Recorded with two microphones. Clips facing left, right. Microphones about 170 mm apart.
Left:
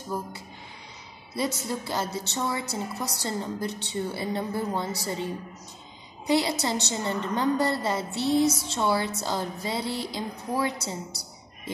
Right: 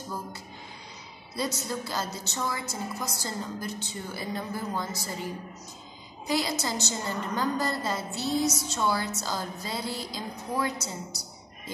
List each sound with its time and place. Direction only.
1.3 s a woman's voice: 25° left (ahead or behind)
6.6 s a woman's voice: 30° left (ahead or behind)
10.8 s a woman's voice: 60° left (ahead or behind)